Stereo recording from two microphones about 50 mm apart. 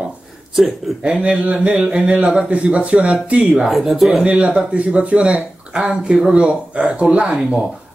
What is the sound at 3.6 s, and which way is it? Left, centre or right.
Speech, centre.